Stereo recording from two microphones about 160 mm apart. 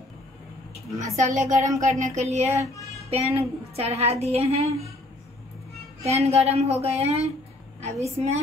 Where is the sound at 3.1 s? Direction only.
40° right (ahead or behind).